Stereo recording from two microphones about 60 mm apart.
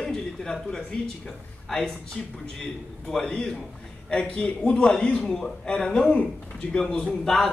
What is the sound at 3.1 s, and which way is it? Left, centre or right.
A man's voice, centre.